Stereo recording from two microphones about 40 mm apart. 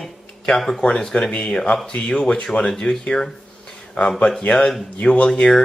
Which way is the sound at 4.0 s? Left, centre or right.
Left.